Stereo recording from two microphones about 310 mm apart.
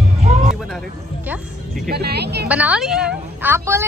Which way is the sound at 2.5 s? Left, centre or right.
Centre.